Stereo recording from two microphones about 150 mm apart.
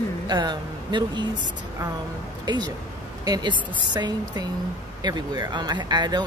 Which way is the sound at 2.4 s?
30° right (ahead or behind).